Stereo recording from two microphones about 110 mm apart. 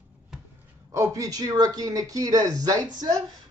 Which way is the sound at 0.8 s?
30° right (ahead or behind).